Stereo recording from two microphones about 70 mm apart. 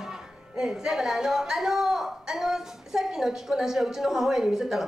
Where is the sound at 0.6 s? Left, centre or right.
Centre.